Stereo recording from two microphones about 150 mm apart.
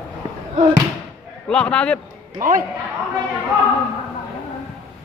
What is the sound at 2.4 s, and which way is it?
Speech, 65° right (ahead or behind).